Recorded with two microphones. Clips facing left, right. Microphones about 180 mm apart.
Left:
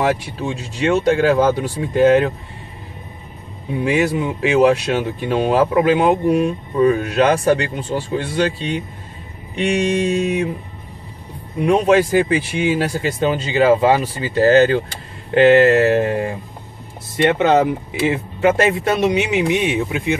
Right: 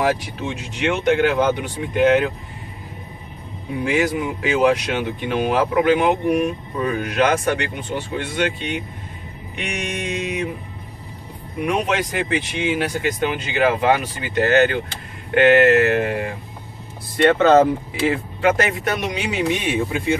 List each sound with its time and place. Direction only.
0.0 s speech: 30° left (ahead or behind)
3.8 s speech: 25° left (ahead or behind)
11.6 s speech: 30° left (ahead or behind)
17.2 s speech: 15° left (ahead or behind)